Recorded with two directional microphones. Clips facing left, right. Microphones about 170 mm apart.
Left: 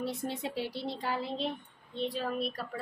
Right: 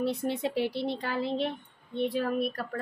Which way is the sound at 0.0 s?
65° right (ahead or behind).